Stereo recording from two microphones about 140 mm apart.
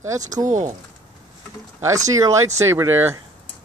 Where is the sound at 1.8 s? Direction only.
25° right (ahead or behind).